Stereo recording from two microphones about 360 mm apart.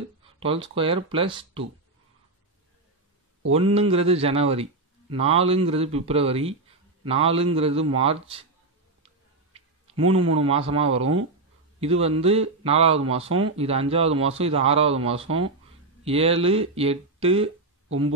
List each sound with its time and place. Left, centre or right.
0.4 s speech: centre
3.5 s speech: centre
9.0 s clicking: centre
10.4 s speech: centre